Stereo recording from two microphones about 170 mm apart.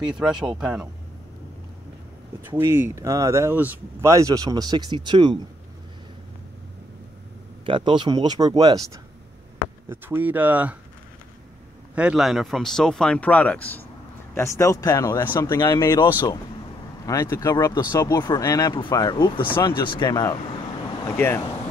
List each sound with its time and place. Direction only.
0.0 s speech: 5° right (ahead or behind)
2.5 s speech: 15° right (ahead or behind)
7.6 s speech: 30° right (ahead or behind); by 10.8 s 10° right (ahead or behind)
11.9 s speech: 5° right (ahead or behind); by 21.4 s 15° left (ahead or behind)